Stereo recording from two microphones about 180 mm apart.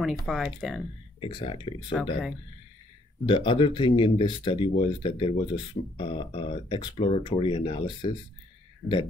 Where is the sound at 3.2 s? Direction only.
25° left (ahead or behind).